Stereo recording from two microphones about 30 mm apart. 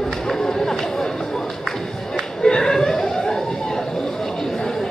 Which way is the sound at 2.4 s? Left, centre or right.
Left.